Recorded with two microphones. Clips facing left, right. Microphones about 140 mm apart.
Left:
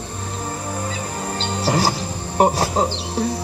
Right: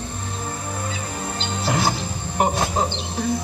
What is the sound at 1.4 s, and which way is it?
Music, 35° left (ahead or behind).